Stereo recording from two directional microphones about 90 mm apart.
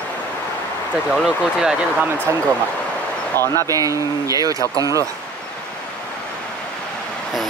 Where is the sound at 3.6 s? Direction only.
40° right (ahead or behind).